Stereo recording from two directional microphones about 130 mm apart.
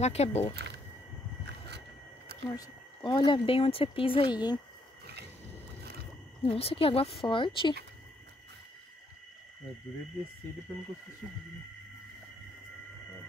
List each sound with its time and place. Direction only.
0.0 s speech: 55° left (ahead or behind)
2.5 s speech: 30° left (ahead or behind)
6.4 s a woman's voice: 45° left (ahead or behind)